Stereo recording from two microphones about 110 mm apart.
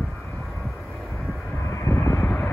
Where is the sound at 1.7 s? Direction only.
25° left (ahead or behind).